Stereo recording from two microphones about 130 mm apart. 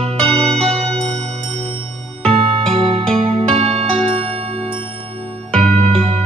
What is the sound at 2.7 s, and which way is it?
Music, 40° right (ahead or behind).